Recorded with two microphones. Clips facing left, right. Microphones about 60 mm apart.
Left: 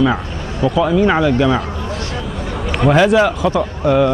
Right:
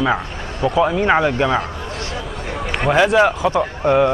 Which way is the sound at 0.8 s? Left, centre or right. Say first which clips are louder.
Left 3 dB; right.